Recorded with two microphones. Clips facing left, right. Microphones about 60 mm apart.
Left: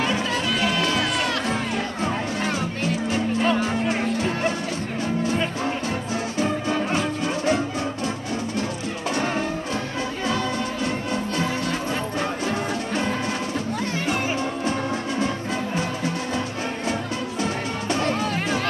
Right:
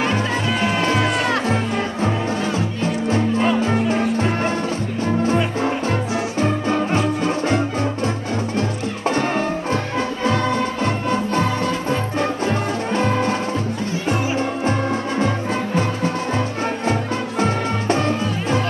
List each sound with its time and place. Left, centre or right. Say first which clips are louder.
0.0 s music: right 3 dB; right
3.1 s music: right 4 dB; right
9.0 s music: right 5 dB; right